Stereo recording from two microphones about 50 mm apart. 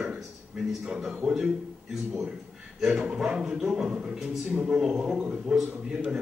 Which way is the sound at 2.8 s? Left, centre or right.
Centre.